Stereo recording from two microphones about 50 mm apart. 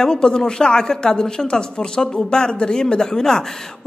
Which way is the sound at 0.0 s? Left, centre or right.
Centre.